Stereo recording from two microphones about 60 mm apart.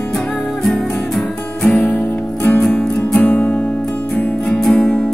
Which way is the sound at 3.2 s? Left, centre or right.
Left.